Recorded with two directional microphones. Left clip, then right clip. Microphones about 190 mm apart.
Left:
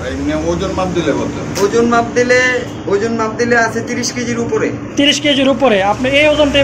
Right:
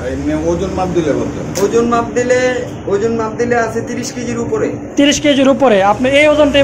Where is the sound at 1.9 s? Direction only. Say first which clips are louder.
Left 1 dB; 20° right (ahead or behind).